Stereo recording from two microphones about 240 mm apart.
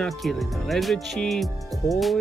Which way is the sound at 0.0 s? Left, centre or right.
Centre.